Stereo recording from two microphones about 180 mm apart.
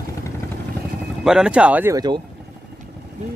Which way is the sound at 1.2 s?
5° right (ahead or behind).